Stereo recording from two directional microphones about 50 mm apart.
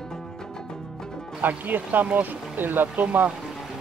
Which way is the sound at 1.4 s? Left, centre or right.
Right.